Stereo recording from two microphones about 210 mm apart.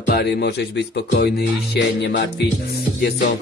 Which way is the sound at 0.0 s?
50° left (ahead or behind).